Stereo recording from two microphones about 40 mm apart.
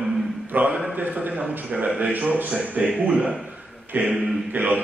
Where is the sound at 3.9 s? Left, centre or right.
Right.